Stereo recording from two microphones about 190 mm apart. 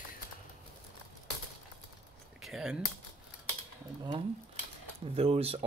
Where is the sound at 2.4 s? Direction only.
Centre (ahead or behind).